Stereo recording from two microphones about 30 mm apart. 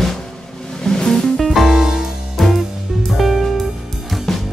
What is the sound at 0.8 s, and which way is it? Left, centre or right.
Music, centre.